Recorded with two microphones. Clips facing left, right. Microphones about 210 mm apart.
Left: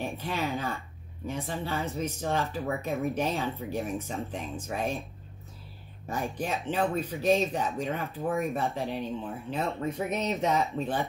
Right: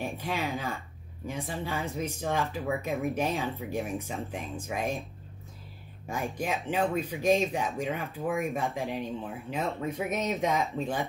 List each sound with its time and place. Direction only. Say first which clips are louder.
0.0 s speech: even; 15° right (ahead or behind)
6.0 s speech: even; 10° right (ahead or behind)